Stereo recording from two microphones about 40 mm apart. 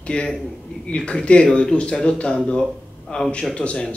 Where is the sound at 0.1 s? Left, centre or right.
Left.